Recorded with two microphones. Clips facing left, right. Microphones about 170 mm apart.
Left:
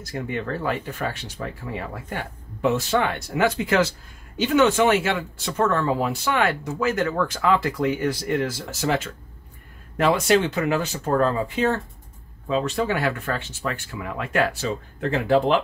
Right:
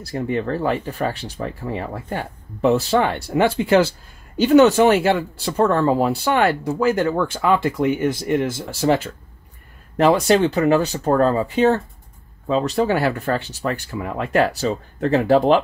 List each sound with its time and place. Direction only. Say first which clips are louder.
0.0 s speech: right 6 dB; 35° right (ahead or behind)